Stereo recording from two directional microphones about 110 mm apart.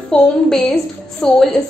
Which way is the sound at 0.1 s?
5° left (ahead or behind).